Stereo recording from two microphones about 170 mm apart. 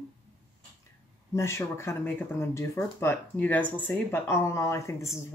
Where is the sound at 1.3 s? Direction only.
15° left (ahead or behind).